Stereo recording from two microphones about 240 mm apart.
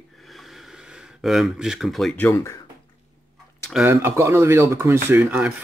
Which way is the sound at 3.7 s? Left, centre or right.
Centre.